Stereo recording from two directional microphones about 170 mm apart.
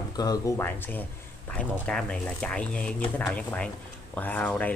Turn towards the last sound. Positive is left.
turn(degrees=10)  # may be behind; listen again after turning